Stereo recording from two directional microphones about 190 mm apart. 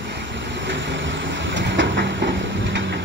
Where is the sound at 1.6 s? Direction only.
70° right (ahead or behind).